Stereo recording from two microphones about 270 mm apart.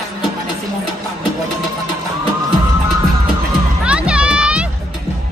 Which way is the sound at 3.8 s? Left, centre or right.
Centre.